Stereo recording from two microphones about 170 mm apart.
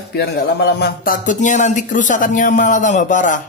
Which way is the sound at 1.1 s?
50° left (ahead or behind).